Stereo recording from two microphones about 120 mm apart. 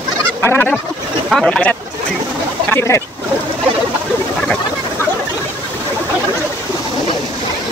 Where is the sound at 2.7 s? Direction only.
25° left (ahead or behind).